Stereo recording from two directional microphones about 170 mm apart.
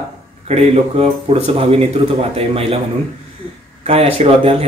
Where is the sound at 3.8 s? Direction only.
35° right (ahead or behind).